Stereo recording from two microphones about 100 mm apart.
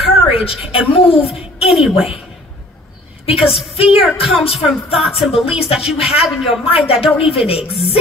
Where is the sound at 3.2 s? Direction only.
75° left (ahead or behind).